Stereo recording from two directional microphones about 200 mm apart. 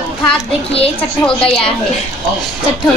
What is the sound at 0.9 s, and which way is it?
Speech, 5° left (ahead or behind).